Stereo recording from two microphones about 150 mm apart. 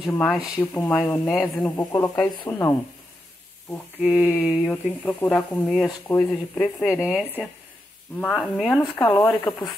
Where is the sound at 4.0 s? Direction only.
5° right (ahead or behind).